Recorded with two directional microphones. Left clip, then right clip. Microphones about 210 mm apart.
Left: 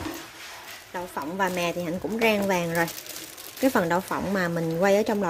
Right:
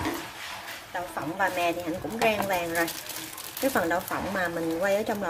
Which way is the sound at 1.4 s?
45° left (ahead or behind).